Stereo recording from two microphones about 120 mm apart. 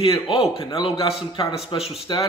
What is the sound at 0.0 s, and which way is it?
A man's voice, 50° left (ahead or behind).